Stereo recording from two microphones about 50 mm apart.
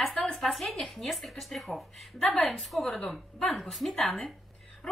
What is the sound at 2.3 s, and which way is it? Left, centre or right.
Speech, left.